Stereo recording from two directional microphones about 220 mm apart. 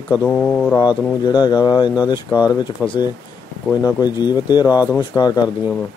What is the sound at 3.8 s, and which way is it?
Speech, 20° left (ahead or behind).